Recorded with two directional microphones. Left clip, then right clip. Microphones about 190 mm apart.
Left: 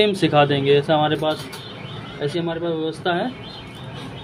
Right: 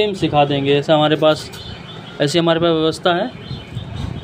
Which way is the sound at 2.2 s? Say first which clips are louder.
Right 9 dB; 40° right (ahead or behind).